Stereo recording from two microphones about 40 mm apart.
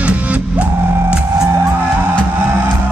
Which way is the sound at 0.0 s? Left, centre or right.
Right.